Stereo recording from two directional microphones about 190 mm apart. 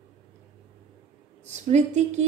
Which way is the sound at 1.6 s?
35° right (ahead or behind).